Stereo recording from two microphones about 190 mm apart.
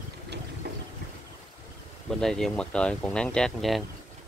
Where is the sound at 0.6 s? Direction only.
55° right (ahead or behind).